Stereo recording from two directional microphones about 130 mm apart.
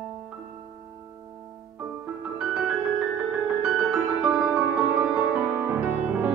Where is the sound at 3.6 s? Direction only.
5° right (ahead or behind).